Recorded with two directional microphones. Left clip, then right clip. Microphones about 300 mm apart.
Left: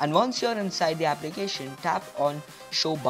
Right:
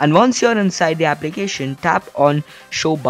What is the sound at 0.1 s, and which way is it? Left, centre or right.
Speech, right.